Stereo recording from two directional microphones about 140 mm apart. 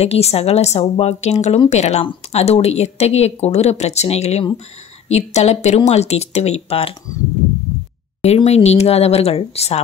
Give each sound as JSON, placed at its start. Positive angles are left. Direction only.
{"t": 0.0, "sound": "speech", "side_deg": 50}
{"t": 8.2, "sound": "speech", "side_deg": 50}